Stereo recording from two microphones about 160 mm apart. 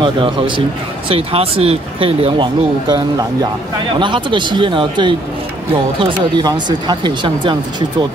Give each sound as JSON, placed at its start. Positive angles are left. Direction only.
{"t": 0.0, "sound": "speech", "side_deg": -30}